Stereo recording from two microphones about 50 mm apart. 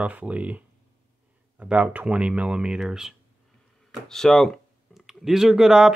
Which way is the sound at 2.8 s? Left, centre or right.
Centre.